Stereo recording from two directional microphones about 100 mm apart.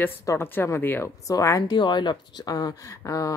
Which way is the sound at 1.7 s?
50° left (ahead or behind).